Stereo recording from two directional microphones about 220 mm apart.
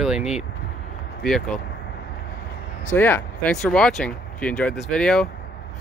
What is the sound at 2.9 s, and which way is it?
Speech, 10° left (ahead or behind).